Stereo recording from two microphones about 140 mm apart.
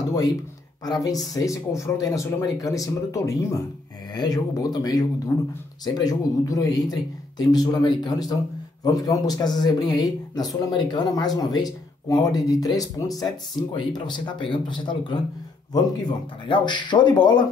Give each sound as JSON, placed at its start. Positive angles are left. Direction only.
{"t": 0.1, "sound": "speech", "side_deg": 25}